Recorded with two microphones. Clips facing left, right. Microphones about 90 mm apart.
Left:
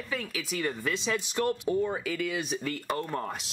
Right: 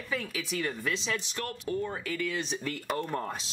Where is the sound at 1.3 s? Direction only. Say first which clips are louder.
Left 6 dB; 15° left (ahead or behind).